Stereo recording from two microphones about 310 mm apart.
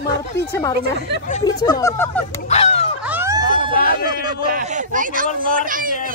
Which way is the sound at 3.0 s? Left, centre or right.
Centre.